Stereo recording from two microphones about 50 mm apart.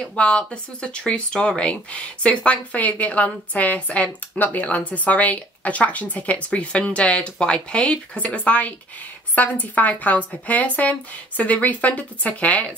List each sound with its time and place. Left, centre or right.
0.0 s speech: left